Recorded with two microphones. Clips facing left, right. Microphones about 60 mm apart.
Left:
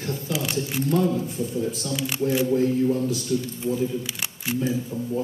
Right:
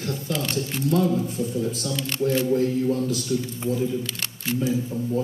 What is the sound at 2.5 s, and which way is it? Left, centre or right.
Speech, left.